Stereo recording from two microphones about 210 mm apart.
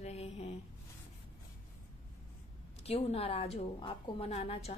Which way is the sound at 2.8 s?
30° left (ahead or behind).